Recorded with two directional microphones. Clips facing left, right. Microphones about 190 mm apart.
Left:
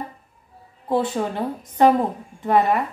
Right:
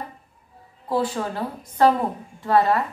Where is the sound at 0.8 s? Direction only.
20° left (ahead or behind).